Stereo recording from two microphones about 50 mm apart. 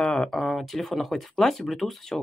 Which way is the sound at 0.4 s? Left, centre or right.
Centre.